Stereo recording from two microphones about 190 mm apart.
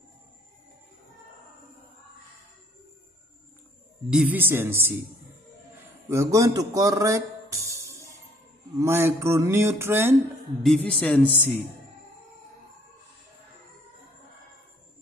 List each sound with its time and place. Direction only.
4.1 s speech: 5° right (ahead or behind)
6.0 s a man's voice: 15° right (ahead or behind)
10.6 s speech: 5° left (ahead or behind)